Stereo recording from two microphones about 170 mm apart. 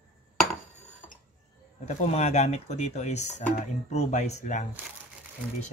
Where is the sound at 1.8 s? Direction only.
40° left (ahead or behind).